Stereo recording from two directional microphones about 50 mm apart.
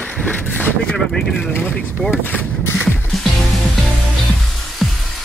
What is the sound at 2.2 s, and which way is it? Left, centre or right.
Speech, left.